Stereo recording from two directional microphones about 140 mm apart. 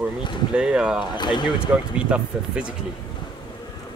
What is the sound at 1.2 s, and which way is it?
Speech, 35° left (ahead or behind).